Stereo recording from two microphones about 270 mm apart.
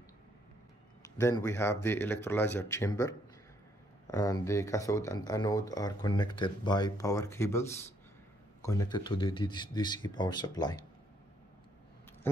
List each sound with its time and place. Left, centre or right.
1.2 s speech: centre